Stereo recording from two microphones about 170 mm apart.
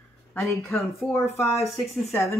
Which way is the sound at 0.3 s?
15° left (ahead or behind).